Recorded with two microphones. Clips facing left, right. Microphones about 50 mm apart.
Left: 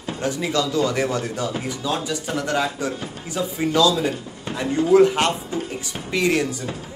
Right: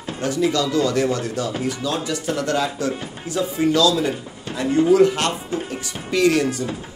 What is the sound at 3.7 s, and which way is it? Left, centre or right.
A man's voice, centre.